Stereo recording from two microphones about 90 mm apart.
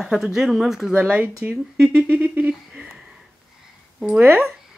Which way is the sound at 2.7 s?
5° right (ahead or behind).